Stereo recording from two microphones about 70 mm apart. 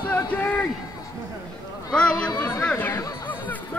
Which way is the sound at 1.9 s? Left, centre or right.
Centre.